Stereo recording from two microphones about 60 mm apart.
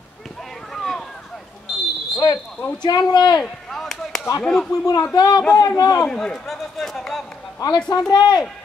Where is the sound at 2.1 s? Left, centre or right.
Left.